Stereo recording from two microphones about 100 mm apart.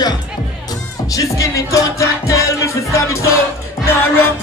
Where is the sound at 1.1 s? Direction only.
35° left (ahead or behind).